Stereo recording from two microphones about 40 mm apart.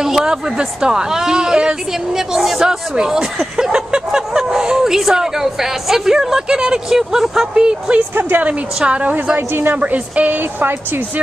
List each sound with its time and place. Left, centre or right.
0.0 s speech: centre
2.3 s speech: centre
8.1 s speech: right
8.7 s a woman's voice: right
9.5 s speech: right
9.8 s a woman's voice: right